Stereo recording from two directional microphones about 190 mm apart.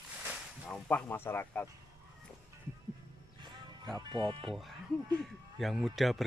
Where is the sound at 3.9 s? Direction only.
25° right (ahead or behind).